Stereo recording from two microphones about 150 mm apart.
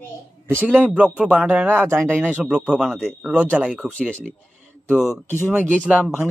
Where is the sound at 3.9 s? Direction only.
5° left (ahead or behind).